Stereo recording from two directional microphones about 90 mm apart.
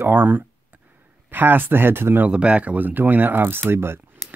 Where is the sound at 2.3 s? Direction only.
10° right (ahead or behind).